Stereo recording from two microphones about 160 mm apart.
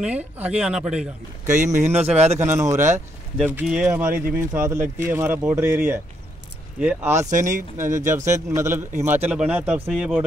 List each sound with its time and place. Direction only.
0.0 s speech: 10° right (ahead or behind)
1.5 s speech: 50° right (ahead or behind)
2.4 s speech: 20° right (ahead or behind)
3.4 s speech: 5° right (ahead or behind)
7.2 s speech: 50° right (ahead or behind)
7.7 s speech: 15° right (ahead or behind)